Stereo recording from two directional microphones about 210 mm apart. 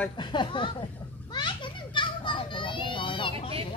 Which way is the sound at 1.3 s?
20° left (ahead or behind).